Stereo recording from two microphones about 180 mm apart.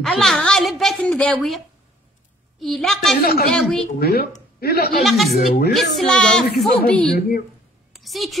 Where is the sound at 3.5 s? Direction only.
Centre (ahead or behind).